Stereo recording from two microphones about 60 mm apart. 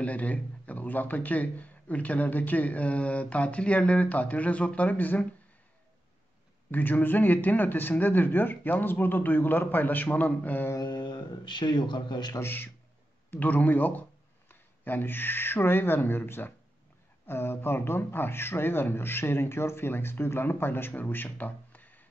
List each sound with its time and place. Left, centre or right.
0.0 s speech: left
6.7 s speech: left
12.4 s speech: left
13.3 s speech: left